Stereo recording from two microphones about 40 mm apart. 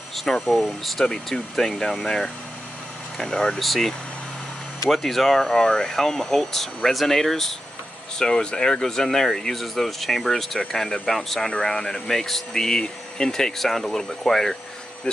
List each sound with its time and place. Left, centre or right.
0.1 s speech: centre
3.5 s speech: centre
4.9 s speech: centre
8.2 s speech: centre